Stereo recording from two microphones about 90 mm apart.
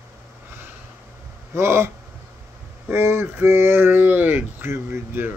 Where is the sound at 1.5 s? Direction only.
30° right (ahead or behind).